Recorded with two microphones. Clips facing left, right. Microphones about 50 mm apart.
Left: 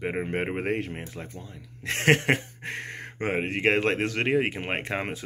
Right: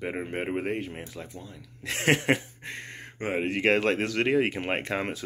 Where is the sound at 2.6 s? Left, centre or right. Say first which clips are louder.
Left 4 dB; left.